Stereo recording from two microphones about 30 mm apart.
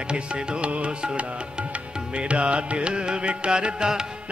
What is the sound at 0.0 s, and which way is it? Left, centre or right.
Music, right.